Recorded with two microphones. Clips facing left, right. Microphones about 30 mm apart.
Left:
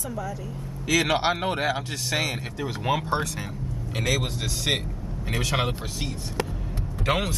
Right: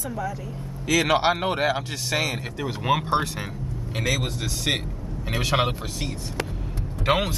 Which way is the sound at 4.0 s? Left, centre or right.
Centre.